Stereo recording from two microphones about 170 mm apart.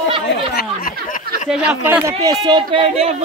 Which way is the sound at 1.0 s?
50° left (ahead or behind).